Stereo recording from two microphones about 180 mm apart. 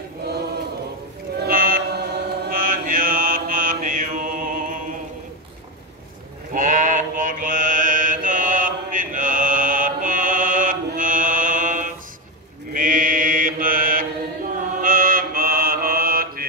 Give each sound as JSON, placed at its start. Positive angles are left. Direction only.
{"t": 1.4, "sound": "chant", "side_deg": -50}
{"t": 6.5, "sound": "mantra", "side_deg": -45}